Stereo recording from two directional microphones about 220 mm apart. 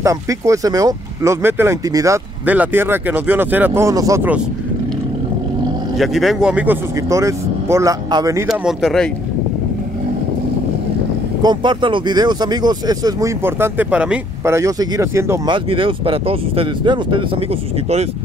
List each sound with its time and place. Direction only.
0.0 s speech: 15° right (ahead or behind)
5.9 s speech: centre (ahead or behind); by 8.5 s 15° right (ahead or behind)
8.5 s speech: centre (ahead or behind)
11.4 s speech: 20° right (ahead or behind)